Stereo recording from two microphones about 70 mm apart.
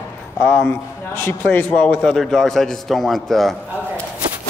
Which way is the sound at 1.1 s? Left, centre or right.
Left.